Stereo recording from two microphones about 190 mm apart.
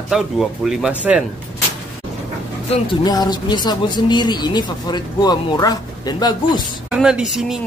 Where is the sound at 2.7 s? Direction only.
25° left (ahead or behind).